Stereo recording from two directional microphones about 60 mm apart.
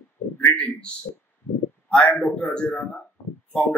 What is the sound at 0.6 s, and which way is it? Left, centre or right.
Speech, centre.